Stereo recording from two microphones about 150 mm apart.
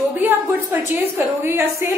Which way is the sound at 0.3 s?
15° right (ahead or behind).